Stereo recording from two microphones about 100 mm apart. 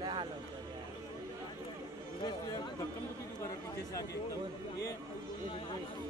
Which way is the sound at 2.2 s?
45° left (ahead or behind).